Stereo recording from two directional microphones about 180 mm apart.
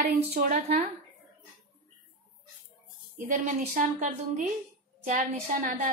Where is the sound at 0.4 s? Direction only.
50° right (ahead or behind).